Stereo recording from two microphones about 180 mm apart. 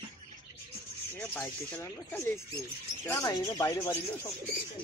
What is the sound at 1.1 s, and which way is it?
Speech, 10° left (ahead or behind).